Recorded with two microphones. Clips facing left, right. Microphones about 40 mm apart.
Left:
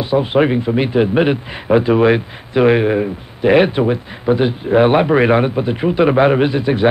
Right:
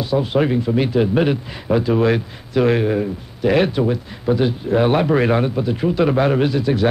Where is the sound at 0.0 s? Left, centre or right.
Left.